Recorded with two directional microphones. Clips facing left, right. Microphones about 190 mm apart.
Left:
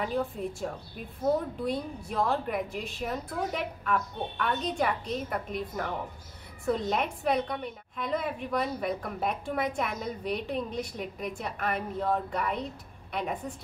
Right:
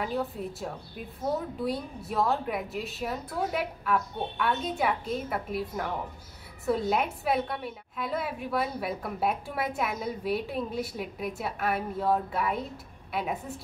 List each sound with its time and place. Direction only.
0.0 s a woman's voice: centre (ahead or behind)